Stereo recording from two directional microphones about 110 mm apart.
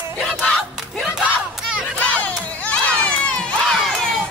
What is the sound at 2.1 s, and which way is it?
Baby cry, 15° left (ahead or behind).